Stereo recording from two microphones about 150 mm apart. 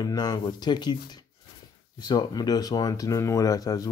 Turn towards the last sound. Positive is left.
turn(degrees=25)  # may be behind; listen again after turning